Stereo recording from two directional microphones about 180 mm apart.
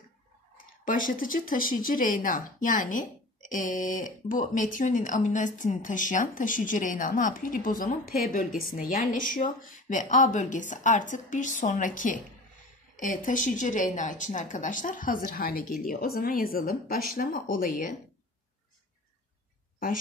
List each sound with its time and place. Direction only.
0.6 s speech: 50° left (ahead or behind)